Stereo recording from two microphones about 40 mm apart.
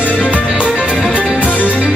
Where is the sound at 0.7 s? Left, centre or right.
Centre.